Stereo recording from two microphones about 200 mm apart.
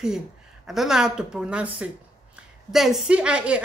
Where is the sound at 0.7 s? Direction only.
Centre (ahead or behind).